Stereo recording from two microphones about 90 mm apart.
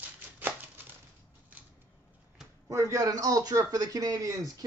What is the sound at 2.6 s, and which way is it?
A man's voice, 35° right (ahead or behind).